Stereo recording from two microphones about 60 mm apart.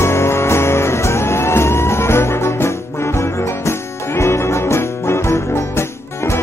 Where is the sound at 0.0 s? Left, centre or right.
Left.